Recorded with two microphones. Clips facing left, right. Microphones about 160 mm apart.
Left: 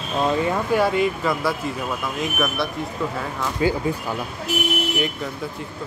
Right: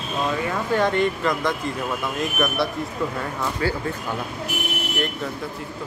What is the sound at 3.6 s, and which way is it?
Speech, 15° left (ahead or behind).